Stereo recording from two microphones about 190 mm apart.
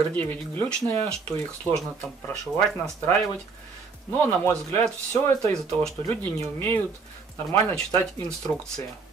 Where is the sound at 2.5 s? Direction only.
5° left (ahead or behind).